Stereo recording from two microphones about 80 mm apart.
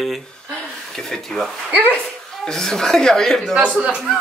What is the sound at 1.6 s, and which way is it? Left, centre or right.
Speech, centre.